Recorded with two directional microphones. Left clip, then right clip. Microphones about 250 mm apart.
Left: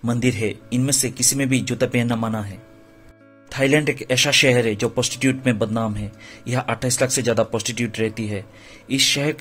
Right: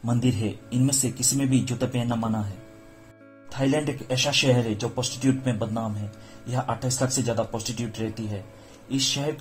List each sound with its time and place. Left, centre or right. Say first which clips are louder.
0.0 s speech: left 5 dB; left
3.5 s speech: left 7 dB; left